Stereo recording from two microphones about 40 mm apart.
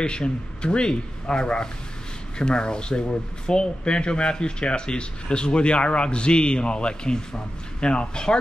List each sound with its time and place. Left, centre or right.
0.0 s speech: left